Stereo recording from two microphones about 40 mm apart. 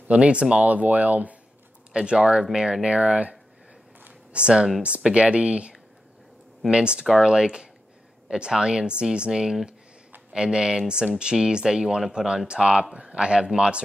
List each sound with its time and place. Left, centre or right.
0.1 s speech: right
1.9 s speech: right
2.9 s speech: right
12.6 s speech: centre
12.9 s speech: right